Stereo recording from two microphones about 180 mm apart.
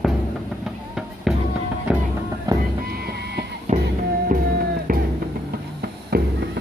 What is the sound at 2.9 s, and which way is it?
Music, 60° right (ahead or behind).